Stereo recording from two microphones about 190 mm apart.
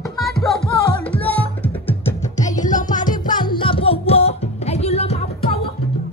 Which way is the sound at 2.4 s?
40° left (ahead or behind).